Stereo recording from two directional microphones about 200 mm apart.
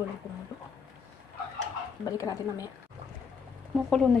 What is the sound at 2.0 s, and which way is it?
Speech, 15° left (ahead or behind).